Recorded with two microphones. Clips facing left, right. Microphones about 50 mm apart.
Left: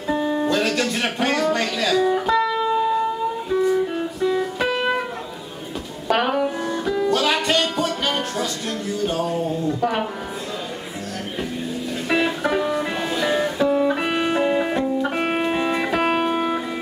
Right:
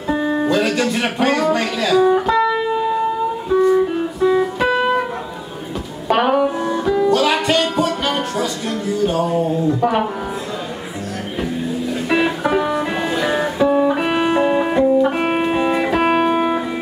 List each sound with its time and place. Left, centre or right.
0.1 s music: centre
2.6 s shofar: centre
3.4 s music: centre
6.0 s music: centre
12.1 s music: centre